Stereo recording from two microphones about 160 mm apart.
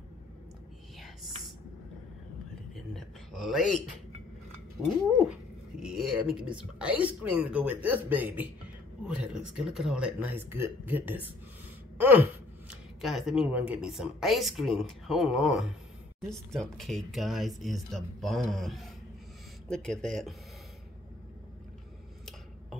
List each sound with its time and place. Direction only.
0.9 s whispering: centre (ahead or behind)
2.7 s a sound: centre (ahead or behind)
5.8 s speech: 5° right (ahead or behind)